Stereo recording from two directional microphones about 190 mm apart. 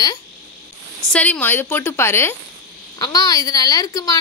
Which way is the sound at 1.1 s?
5° left (ahead or behind).